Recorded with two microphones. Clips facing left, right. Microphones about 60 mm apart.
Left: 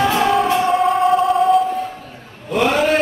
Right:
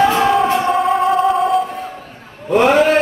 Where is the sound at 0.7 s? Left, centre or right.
Centre.